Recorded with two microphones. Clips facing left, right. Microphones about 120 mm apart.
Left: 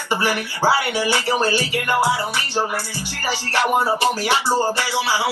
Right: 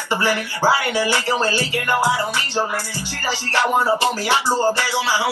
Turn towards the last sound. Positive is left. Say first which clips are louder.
# even
turn(degrees=15)  # may be behind; listen again after turning